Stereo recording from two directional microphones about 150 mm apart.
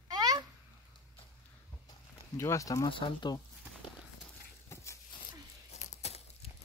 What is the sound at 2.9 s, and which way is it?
Speech, 35° left (ahead or behind).